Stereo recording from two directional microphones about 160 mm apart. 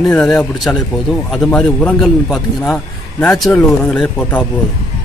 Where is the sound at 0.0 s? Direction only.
5° left (ahead or behind).